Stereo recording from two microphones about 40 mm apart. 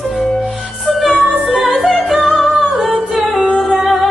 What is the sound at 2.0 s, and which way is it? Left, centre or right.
Music, centre.